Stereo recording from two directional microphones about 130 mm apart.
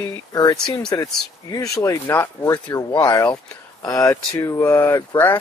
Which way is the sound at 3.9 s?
25° left (ahead or behind).